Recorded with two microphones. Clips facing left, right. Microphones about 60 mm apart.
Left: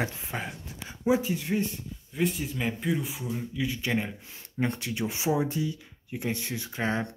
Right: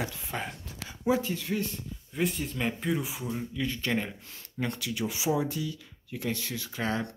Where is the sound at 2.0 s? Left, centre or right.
Centre.